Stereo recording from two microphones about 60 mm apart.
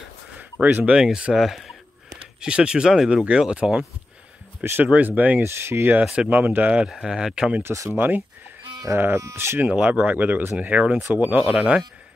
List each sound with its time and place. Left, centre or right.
0.4 s a sound: right
0.9 s speech: centre
2.4 s speech: centre
4.8 s speech: right
5.4 s speech: right
6.2 s speech: right
6.9 s speech: centre
7.9 s speech: right
8.9 s speech: right
9.8 s speech: right